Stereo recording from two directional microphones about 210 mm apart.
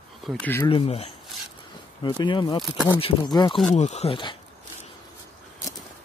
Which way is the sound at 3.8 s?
30° left (ahead or behind).